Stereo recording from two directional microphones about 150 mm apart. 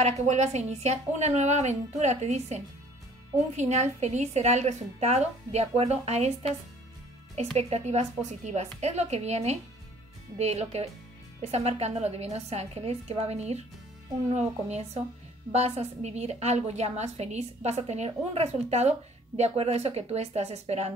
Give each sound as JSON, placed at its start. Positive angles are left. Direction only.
{"t": 0.0, "sound": "a woman's voice", "side_deg": -50}
{"t": 7.5, "sound": "a woman's voice", "side_deg": -45}